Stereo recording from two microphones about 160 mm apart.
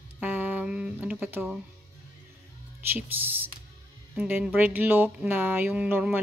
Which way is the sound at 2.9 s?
10° right (ahead or behind).